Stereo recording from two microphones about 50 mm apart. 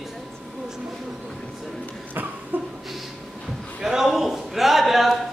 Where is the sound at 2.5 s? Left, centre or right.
Right.